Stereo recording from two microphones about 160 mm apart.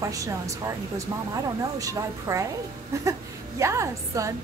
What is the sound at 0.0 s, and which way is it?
A woman's voice, 20° right (ahead or behind).